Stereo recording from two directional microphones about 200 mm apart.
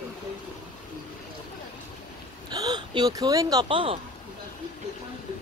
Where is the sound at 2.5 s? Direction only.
20° right (ahead or behind).